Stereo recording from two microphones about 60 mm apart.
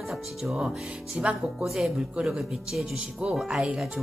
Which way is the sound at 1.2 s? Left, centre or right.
Centre.